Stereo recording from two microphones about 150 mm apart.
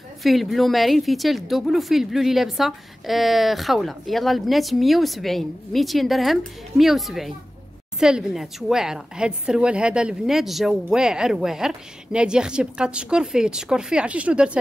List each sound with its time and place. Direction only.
0.2 s a woman's voice: centre (ahead or behind)